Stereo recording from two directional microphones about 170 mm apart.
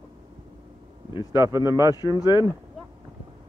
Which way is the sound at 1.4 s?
20° right (ahead or behind).